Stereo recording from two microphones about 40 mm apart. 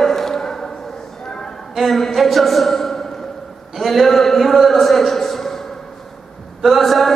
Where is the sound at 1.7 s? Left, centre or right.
Centre.